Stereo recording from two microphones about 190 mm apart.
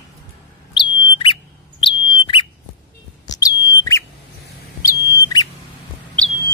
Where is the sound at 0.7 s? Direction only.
25° left (ahead or behind).